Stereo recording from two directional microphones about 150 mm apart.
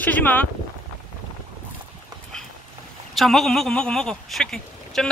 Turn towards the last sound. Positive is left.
turn(degrees=5)  # may be behind; listen again after turning